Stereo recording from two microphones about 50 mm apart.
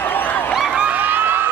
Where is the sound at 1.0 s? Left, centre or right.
Right.